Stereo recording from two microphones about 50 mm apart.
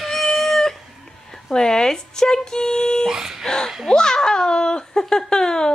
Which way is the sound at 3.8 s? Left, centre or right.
Centre.